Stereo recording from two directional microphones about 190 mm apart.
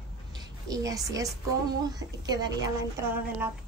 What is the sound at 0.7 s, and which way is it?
A woman's voice, 20° right (ahead or behind).